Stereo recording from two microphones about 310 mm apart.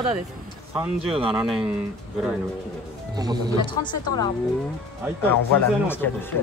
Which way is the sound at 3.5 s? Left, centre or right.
Centre.